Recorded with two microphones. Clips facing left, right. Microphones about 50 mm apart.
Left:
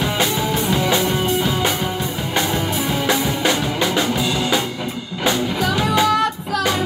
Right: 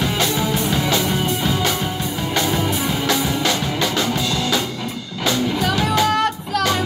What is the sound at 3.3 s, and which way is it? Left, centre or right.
Music, centre.